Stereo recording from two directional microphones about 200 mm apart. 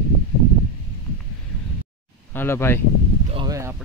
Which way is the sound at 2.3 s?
10° left (ahead or behind).